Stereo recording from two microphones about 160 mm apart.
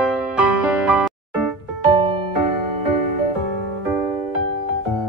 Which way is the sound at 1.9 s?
35° right (ahead or behind).